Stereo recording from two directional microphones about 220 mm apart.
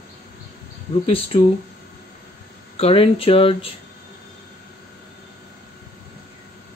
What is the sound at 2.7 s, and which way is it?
Speech, 25° left (ahead or behind).